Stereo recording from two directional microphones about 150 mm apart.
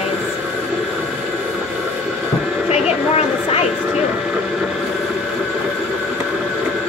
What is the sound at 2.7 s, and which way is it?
Vehicle, 45° left (ahead or behind).